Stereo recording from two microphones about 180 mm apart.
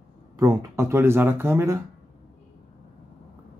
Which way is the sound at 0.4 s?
20° right (ahead or behind).